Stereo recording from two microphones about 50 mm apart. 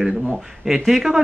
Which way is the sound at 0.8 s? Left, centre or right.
Centre.